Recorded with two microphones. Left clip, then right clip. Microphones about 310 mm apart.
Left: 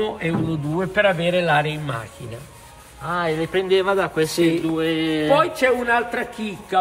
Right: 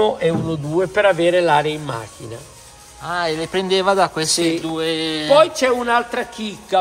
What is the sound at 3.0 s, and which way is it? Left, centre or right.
A woman's voice, centre.